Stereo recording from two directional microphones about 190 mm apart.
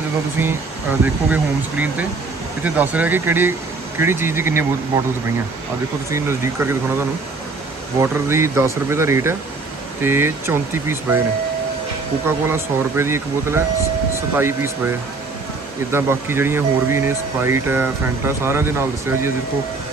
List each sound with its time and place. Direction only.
0.4 s speech: 10° right (ahead or behind)
6.0 s speech: 15° right (ahead or behind)
12.3 s speech: 15° right (ahead or behind)
15.9 s speech: 10° right (ahead or behind)